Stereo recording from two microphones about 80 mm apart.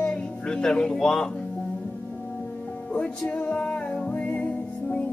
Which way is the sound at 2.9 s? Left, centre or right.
Centre.